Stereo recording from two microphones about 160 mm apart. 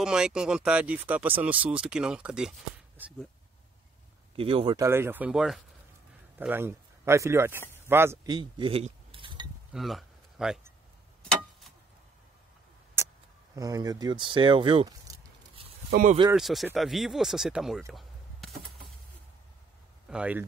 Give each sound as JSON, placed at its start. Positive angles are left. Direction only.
{"t": 0.0, "sound": "speech", "side_deg": -5}
{"t": 4.4, "sound": "speech", "side_deg": -35}
{"t": 4.7, "sound": "speech", "side_deg": -15}
{"t": 8.3, "sound": "mechanisms", "side_deg": -30}
{"t": 9.7, "sound": "a sound", "side_deg": 0}
{"t": 13.0, "sound": "tick", "side_deg": -15}
{"t": 13.6, "sound": "speech", "side_deg": -20}
{"t": 15.9, "sound": "speech", "side_deg": -60}
{"t": 16.3, "sound": "speech", "side_deg": 0}
{"t": 17.9, "sound": "chop", "side_deg": 0}
{"t": 20.1, "sound": "speech", "side_deg": -10}